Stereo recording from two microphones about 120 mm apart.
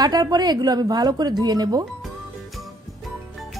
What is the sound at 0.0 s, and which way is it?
A woman's voice, 35° right (ahead or behind).